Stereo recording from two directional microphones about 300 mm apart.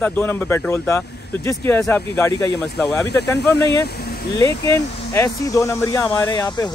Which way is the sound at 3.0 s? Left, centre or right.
Left.